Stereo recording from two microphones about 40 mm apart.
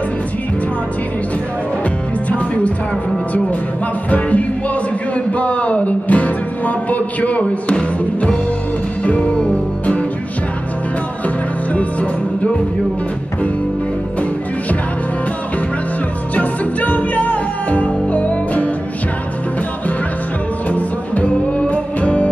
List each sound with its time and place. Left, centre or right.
2.2 s music: left
4.1 s music: left
9.0 s music: left
11.2 s music: left
16.3 s music: left
20.6 s music: left